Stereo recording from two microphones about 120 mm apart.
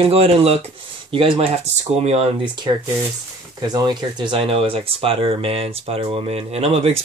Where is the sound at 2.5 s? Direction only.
40° right (ahead or behind).